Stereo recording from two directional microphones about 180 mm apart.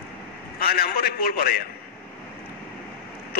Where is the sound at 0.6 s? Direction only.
55° left (ahead or behind).